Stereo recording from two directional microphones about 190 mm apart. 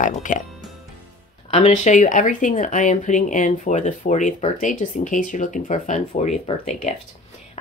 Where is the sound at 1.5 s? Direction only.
40° left (ahead or behind).